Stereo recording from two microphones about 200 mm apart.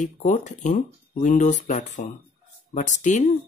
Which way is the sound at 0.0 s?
40° left (ahead or behind).